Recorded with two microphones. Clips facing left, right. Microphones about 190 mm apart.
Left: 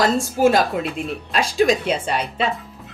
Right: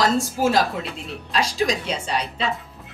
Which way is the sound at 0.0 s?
55° left (ahead or behind).